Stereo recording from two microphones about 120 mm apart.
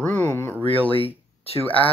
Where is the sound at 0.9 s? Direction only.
50° left (ahead or behind).